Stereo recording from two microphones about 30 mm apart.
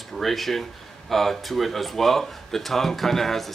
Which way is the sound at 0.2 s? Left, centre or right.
Centre.